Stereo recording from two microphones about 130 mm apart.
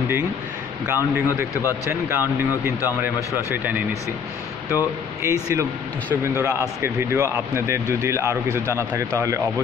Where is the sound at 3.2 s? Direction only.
25° left (ahead or behind).